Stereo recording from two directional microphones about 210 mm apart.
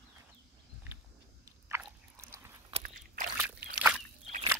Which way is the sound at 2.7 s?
40° right (ahead or behind).